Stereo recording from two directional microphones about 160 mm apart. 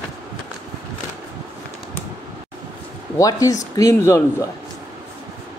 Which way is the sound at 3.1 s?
20° left (ahead or behind).